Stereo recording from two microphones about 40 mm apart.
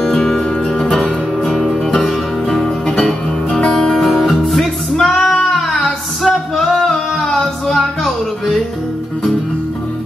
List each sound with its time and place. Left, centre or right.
0.1 s music: centre
1.6 s music: centre
2.4 s music: centre
5.2 s a sound: centre